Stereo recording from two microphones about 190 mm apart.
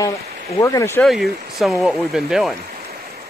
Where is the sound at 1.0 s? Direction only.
Centre (ahead or behind).